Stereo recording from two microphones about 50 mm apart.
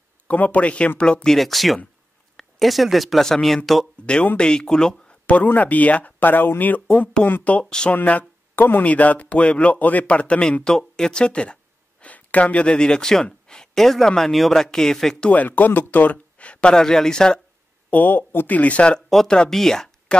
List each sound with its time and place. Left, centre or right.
0.3 s speech: left
1.3 s speech: centre
4.0 s speech: left
5.2 s speech: left
10.6 s speech: centre
15.2 s speech: left; by 17.4 s centre
17.8 s speech: left
18.5 s speech: left; by 19.9 s centre
20.1 s speech: left